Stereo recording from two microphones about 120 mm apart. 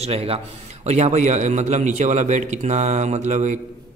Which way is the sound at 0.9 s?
70° right (ahead or behind).